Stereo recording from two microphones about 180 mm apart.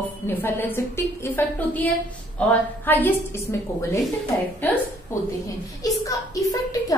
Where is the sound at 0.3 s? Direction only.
10° left (ahead or behind).